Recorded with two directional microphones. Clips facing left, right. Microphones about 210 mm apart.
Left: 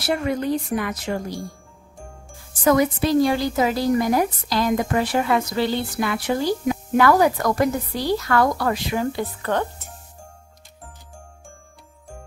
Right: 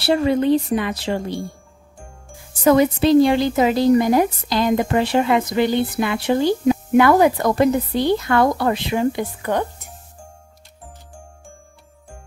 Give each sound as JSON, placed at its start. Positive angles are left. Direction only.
{"t": 0.0, "sound": "a woman's voice", "side_deg": -30}
{"t": 2.6, "sound": "a woman's voice", "side_deg": -30}